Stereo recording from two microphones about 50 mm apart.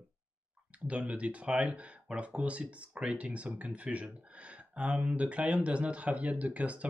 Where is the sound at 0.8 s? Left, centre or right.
Right.